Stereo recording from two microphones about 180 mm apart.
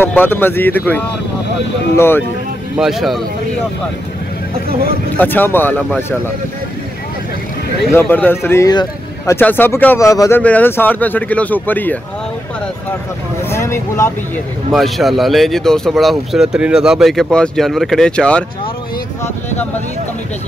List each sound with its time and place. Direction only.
0.0 s speech: 10° left (ahead or behind)
2.8 s speech: centre (ahead or behind)
5.1 s speech: 10° left (ahead or behind)
7.9 s speech: 10° left (ahead or behind)
13.5 s speech: 15° left (ahead or behind)
14.7 s speech: centre (ahead or behind)